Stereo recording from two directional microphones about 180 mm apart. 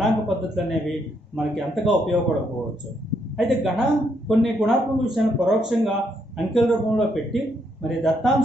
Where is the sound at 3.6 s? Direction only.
Centre (ahead or behind).